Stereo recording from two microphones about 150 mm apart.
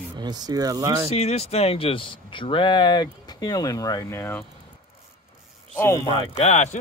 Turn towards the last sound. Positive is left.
turn(degrees=50)  # may be behind; listen again after turning